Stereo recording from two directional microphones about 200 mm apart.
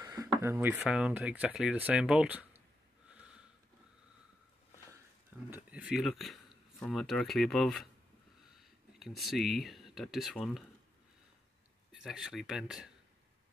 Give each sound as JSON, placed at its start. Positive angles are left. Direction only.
{"t": 0.0, "sound": "a sound", "side_deg": -20}
{"t": 0.4, "sound": "speech", "side_deg": -10}
{"t": 5.5, "sound": "speech", "side_deg": -5}
{"t": 11.9, "sound": "speech", "side_deg": 0}